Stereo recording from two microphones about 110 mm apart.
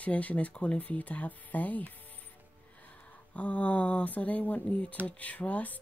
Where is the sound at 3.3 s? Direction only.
15° left (ahead or behind).